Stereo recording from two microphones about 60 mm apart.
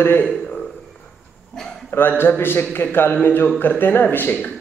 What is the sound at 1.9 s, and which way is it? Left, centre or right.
A man's voice, left.